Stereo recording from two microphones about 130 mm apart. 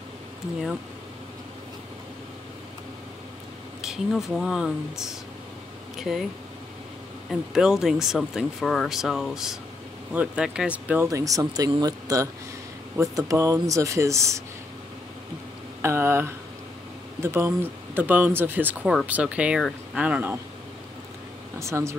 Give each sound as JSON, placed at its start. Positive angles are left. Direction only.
{"t": 3.8, "sound": "speech", "side_deg": -5}
{"t": 7.2, "sound": "speech", "side_deg": -5}
{"t": 11.1, "sound": "speech", "side_deg": -25}
{"t": 15.8, "sound": "speech", "side_deg": -20}
{"t": 21.5, "sound": "speech", "side_deg": -20}